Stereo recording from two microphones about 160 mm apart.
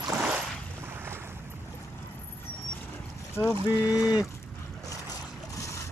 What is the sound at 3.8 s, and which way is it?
Speech, 5° right (ahead or behind).